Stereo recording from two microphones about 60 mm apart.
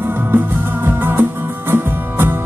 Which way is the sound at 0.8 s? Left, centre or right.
Right.